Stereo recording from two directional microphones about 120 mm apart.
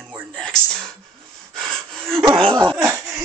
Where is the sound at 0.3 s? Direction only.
5° left (ahead or behind).